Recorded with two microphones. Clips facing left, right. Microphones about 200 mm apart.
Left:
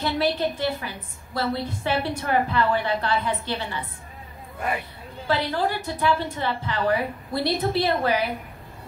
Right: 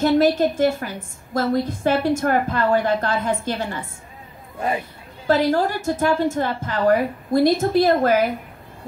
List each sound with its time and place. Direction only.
0.0 s a woman's voice: 45° right (ahead or behind)
4.6 s speech: 25° right (ahead or behind)
5.2 s a woman's voice: 45° right (ahead or behind)